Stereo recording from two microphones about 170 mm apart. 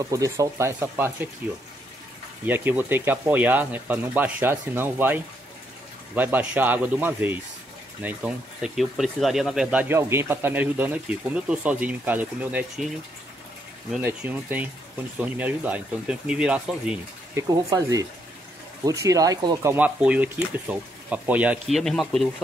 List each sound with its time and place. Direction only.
0.1 s speech: 20° right (ahead or behind)
2.4 s speech: 10° right (ahead or behind)
14.0 s speech: 10° right (ahead or behind)